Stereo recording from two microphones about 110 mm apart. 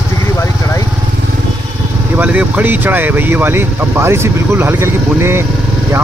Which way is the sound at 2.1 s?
15° right (ahead or behind).